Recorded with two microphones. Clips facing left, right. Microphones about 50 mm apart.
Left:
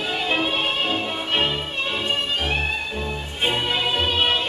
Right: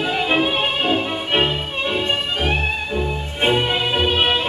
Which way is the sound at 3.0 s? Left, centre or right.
Centre.